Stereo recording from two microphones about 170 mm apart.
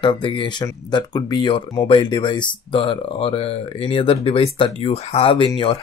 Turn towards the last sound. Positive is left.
turn(degrees=30)  # may be behind; listen again after turning